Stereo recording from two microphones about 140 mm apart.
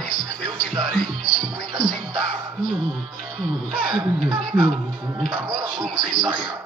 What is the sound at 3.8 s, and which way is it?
Speech, 35° right (ahead or behind).